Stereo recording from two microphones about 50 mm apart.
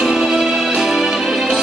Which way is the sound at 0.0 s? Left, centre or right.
Centre.